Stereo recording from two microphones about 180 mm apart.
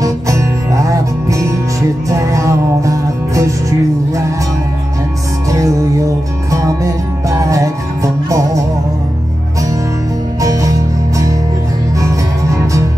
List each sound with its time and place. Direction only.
0.0 s music: 15° right (ahead or behind)
6.5 s music: 15° right (ahead or behind)
10.4 s music: 20° right (ahead or behind)
12.0 s music: 15° right (ahead or behind)